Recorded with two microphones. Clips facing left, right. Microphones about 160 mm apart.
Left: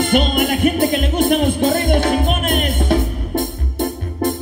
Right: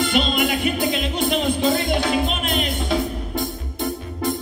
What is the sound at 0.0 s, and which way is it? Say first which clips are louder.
Music: left 4 dB; 50° left (ahead or behind).